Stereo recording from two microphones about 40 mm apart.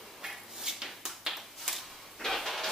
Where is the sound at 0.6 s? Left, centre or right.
Centre.